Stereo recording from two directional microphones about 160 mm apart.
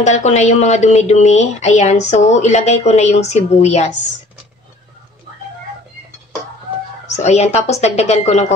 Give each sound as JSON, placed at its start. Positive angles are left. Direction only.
{"t": 0.0, "sound": "speech", "side_deg": 45}
{"t": 7.1, "sound": "speech", "side_deg": 45}